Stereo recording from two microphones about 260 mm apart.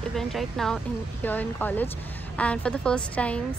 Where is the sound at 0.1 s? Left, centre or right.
Centre.